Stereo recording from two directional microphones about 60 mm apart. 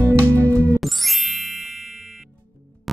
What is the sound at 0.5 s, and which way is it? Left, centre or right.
Music, left.